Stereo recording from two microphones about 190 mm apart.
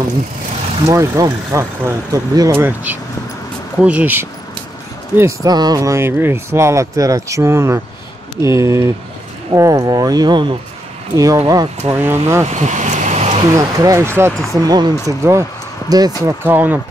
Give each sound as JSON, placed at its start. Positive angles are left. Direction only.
{"t": 0.8, "sound": "speech", "side_deg": -15}
{"t": 12.4, "sound": "a sound", "side_deg": -40}
{"t": 13.6, "sound": "speech", "side_deg": -20}